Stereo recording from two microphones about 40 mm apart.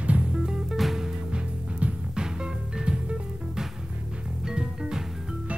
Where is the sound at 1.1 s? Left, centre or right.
Right.